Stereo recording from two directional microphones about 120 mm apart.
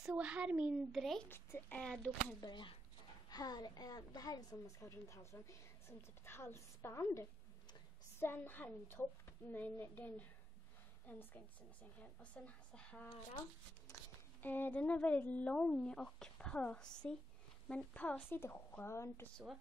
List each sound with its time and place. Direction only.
0.0 s a woman's voice: 10° right (ahead or behind)
1.3 s a woman's voice: 15° left (ahead or behind)
2.4 s a woman's voice: 40° left (ahead or behind); by 13.1 s 10° left (ahead or behind)
13.9 s a sound: 25° left (ahead or behind)
14.4 s a woman's voice: 15° left (ahead or behind)
19.3 s a woman's voice: centre (ahead or behind)